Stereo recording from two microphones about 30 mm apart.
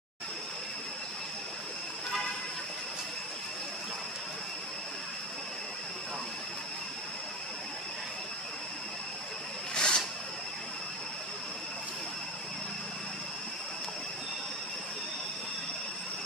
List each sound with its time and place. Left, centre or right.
9.8 s zipper: left